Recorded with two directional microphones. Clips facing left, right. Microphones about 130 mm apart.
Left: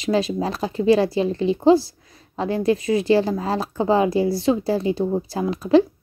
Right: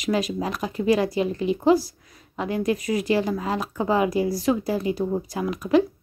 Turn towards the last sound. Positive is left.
turn(degrees=30)  # may be behind; listen again after turning